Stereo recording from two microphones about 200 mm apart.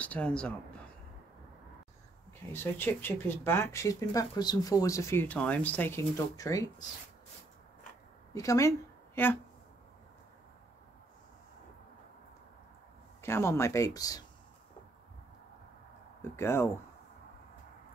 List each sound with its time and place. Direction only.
0.0 s speech: 5° left (ahead or behind)
2.5 s speech: 10° left (ahead or behind)
8.4 s a woman's voice: 15° left (ahead or behind)
13.2 s speech: 15° left (ahead or behind)
16.2 s speech: 10° left (ahead or behind)